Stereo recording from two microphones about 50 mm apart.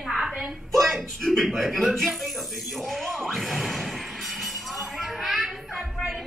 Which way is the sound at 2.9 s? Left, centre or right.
Centre.